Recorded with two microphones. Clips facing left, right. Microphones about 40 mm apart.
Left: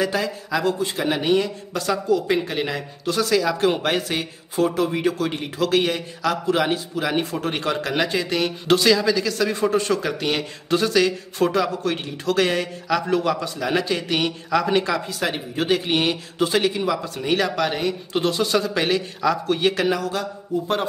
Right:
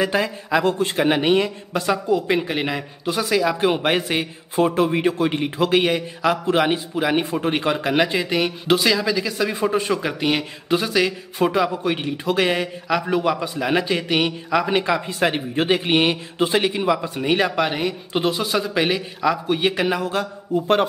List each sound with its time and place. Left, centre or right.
0.0 s a man's voice: right
0.7 s a man's voice: right
1.0 s a man's voice: right
20.1 s a man's voice: right